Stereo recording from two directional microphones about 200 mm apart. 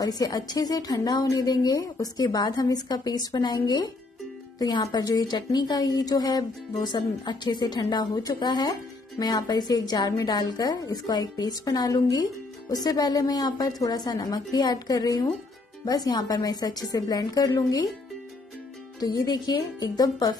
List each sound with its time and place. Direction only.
0.0 s a woman's voice: 20° left (ahead or behind)
18.9 s a woman's voice: 20° left (ahead or behind)